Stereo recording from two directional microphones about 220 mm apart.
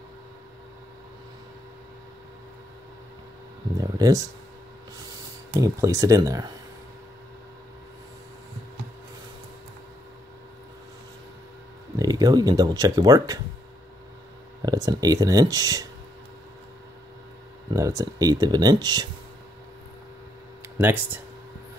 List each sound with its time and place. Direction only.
3.7 s speech: 15° right (ahead or behind)
5.6 s speech: 15° right (ahead or behind)
12.0 s speech: 15° right (ahead or behind)
14.6 s speech: 15° right (ahead or behind)
17.6 s speech: 15° right (ahead or behind)
20.7 s speech: 10° right (ahead or behind)